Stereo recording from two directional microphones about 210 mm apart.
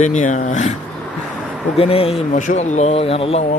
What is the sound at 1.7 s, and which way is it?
Speech, 25° left (ahead or behind).